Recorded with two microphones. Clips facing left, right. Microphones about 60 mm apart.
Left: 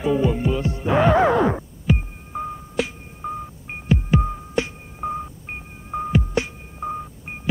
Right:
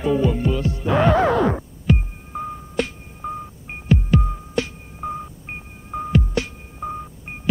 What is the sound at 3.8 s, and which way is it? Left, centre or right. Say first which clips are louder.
Music: right 1 dB; centre.